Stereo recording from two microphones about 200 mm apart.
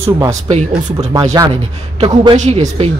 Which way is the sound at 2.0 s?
30° right (ahead or behind).